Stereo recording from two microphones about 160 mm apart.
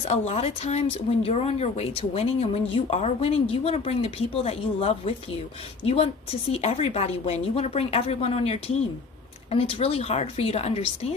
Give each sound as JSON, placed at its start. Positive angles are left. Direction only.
{"t": 0.1, "sound": "speech", "side_deg": 45}
{"t": 6.5, "sound": "speech", "side_deg": 40}